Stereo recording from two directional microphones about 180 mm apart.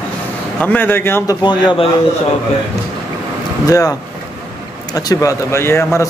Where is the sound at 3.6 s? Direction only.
20° left (ahead or behind).